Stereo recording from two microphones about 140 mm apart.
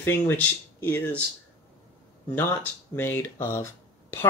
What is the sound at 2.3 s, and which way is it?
Speech, 15° left (ahead or behind).